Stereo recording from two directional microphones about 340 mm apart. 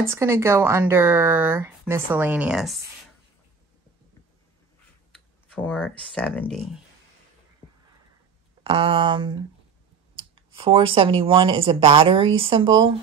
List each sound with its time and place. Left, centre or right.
0.0 s speech: centre
5.1 s speech: centre
8.6 s speech: centre